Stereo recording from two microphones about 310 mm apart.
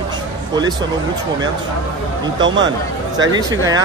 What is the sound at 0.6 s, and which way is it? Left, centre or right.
Speech, centre.